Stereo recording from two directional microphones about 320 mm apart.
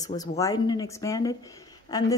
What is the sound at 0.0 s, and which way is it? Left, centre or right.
A woman's voice, centre.